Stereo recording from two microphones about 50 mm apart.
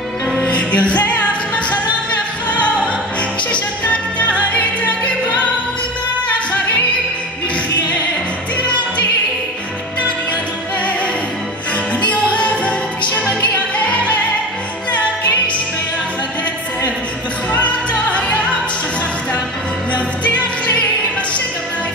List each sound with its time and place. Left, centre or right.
0.4 s music: left
11.7 s music: left
13.8 s music: left
17.5 s music: left
19.9 s music: left